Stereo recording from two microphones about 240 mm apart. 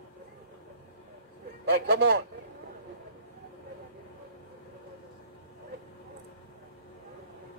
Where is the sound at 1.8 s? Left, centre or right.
Right.